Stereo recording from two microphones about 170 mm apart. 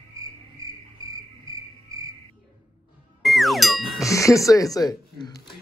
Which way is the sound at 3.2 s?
Centre (ahead or behind).